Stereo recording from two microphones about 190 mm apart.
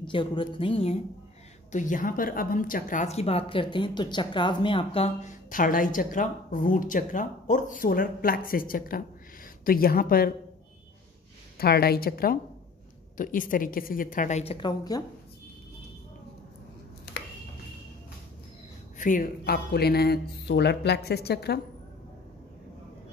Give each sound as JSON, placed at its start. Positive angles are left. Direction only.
{"t": 0.0, "sound": "a woman's voice", "side_deg": 25}
{"t": 1.7, "sound": "a woman's voice", "side_deg": 40}
{"t": 11.5, "sound": "a woman's voice", "side_deg": 55}
{"t": 14.4, "sound": "a woman's voice", "side_deg": 25}
{"t": 18.9, "sound": "speech", "side_deg": 45}